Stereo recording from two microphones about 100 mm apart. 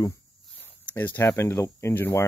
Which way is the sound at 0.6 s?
15° left (ahead or behind).